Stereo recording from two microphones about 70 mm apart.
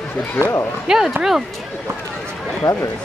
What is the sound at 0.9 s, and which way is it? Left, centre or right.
Speech, centre.